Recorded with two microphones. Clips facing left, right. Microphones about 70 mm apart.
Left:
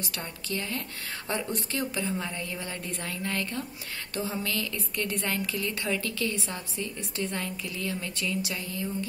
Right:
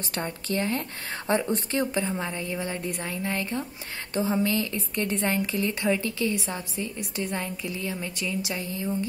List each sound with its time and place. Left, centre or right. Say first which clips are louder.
0.0 s a woman's voice: right 6 dB; right